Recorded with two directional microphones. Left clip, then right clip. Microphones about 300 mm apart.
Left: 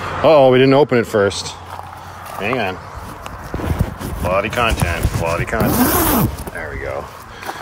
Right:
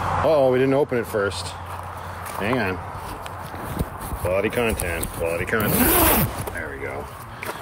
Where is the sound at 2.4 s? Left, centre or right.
Centre.